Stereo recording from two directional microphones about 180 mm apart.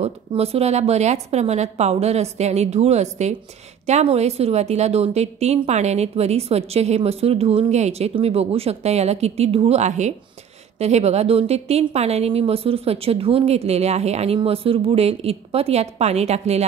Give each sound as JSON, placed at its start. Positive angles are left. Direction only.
{"t": 0.0, "sound": "a woman's voice", "side_deg": -35}